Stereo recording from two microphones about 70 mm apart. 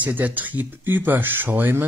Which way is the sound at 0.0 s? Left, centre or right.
Right.